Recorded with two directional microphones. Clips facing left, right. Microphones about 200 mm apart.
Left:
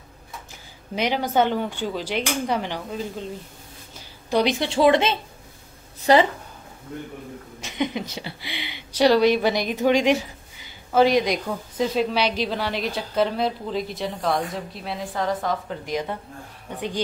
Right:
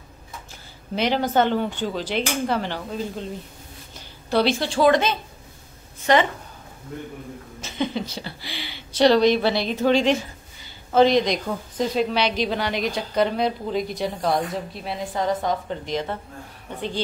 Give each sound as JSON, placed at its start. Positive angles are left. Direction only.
{"t": 0.9, "sound": "speech", "side_deg": 10}
{"t": 4.3, "sound": "a woman's voice", "side_deg": 15}
{"t": 7.6, "sound": "speech", "side_deg": 15}